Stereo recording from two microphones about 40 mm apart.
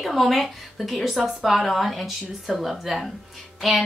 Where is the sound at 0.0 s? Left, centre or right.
Centre.